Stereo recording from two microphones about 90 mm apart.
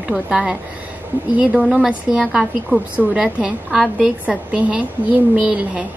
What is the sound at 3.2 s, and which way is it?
A woman's voice, 10° right (ahead or behind).